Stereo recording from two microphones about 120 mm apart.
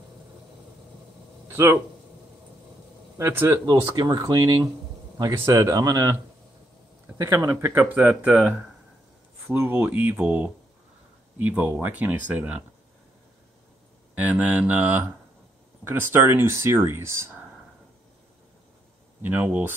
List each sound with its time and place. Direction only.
1.5 s speech: 25° right (ahead or behind)
3.2 s speech: 25° right (ahead or behind)
7.1 s speech: 20° right (ahead or behind)
14.1 s speech: 15° right (ahead or behind)
19.2 s speech: 15° right (ahead or behind)